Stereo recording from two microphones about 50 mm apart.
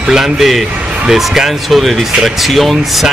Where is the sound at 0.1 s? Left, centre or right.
Centre.